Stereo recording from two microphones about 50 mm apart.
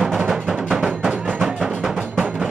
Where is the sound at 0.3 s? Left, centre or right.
Centre.